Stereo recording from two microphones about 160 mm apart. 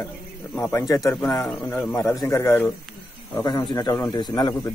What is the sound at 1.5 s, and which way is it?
A man's voice, 10° left (ahead or behind).